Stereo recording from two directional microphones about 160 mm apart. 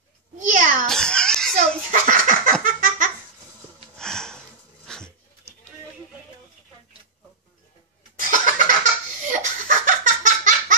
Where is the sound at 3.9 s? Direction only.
5° left (ahead or behind).